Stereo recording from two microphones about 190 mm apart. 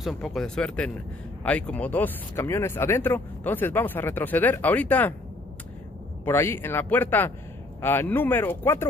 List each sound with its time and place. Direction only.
0.0 s speech: centre (ahead or behind)
6.2 s speech: 10° left (ahead or behind)